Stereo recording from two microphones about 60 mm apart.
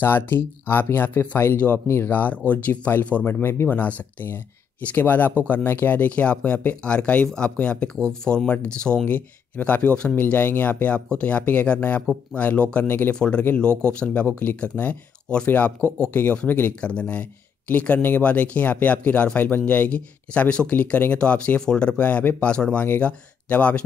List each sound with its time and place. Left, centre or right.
0.0 s speech: left; by 9.1 s centre
9.1 s speech: left
12.8 s speech: left
13.1 s speech: centre
16.8 s speech: centre